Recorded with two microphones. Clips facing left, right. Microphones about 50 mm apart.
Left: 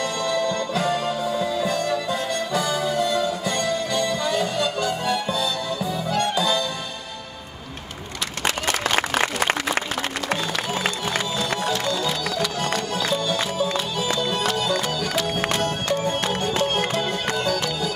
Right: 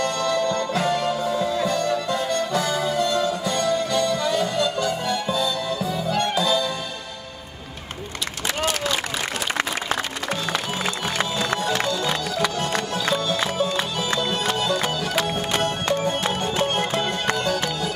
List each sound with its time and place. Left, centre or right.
0.0 s music: centre
8.6 s applause: left
13.0 s music: centre